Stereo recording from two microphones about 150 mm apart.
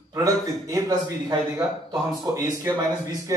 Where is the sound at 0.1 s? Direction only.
20° right (ahead or behind).